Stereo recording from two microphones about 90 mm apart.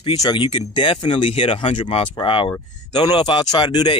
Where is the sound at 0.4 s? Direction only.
70° left (ahead or behind).